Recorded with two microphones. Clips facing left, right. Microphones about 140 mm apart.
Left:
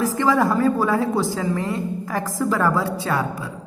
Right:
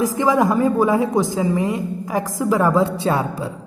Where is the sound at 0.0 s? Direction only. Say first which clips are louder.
Right 2 dB; 15° right (ahead or behind).